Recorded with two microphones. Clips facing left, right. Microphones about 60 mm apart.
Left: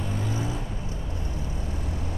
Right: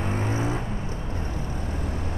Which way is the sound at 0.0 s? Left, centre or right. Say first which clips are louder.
Right 4 dB; right.